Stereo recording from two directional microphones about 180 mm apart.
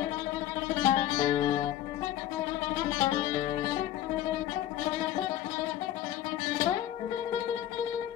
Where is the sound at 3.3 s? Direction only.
20° left (ahead or behind).